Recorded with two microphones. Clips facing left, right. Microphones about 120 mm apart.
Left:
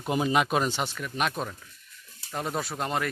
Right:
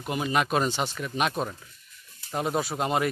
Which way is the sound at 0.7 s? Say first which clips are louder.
Right 2 dB; 10° right (ahead or behind).